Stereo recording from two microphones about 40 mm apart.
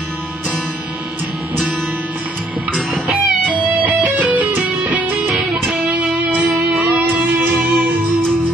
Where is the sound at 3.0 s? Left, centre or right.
Centre.